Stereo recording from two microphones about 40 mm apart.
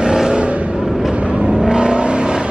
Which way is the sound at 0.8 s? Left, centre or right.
Centre.